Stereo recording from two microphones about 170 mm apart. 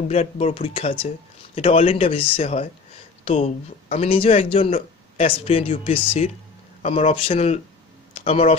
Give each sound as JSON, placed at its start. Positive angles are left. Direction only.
{"t": 0.1, "sound": "speech", "side_deg": 35}
{"t": 3.9, "sound": "speech", "side_deg": 35}